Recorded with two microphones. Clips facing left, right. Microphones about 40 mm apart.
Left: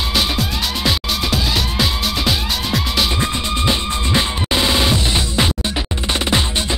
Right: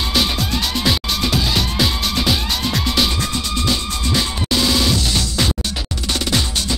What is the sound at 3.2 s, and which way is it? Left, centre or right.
Music, left.